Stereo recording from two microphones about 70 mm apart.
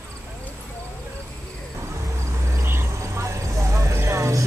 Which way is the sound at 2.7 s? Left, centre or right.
Right.